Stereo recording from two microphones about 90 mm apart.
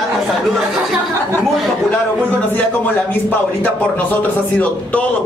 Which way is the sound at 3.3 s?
20° left (ahead or behind).